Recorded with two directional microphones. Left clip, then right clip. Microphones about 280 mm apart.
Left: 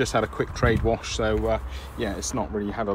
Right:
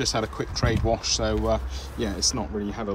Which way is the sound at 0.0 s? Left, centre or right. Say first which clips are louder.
Left 3 dB; centre.